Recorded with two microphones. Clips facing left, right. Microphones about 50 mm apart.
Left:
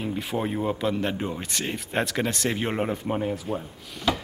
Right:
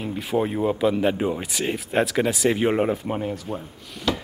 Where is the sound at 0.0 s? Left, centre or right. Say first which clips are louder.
Right 4 dB; centre.